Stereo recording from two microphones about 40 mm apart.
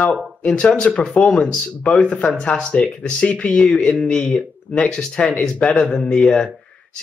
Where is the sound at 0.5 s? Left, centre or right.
Left.